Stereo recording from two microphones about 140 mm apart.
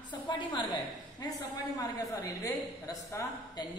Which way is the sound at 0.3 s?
35° left (ahead or behind).